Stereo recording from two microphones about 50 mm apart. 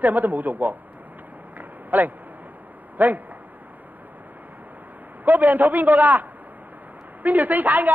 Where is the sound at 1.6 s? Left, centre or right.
Right.